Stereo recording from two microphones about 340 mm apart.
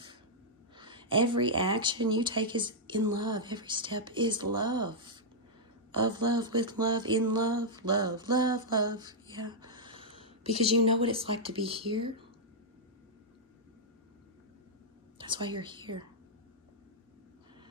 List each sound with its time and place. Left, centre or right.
0.7 s speech: centre
7.3 s a sound: centre
10.5 s speech: centre
15.1 s speech: centre